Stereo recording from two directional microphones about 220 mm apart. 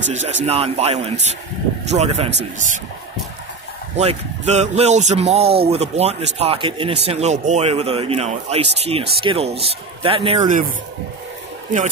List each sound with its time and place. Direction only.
0.1 s speech: 30° right (ahead or behind)
3.9 s speech: 30° right (ahead or behind)
11.7 s speech: 35° right (ahead or behind)